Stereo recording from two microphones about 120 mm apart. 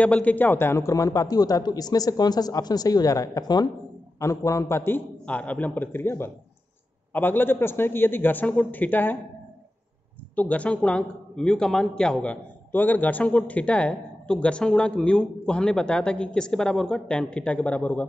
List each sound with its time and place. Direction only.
0.0 s a man's voice: 10° left (ahead or behind)
10.3 s speech: 10° left (ahead or behind)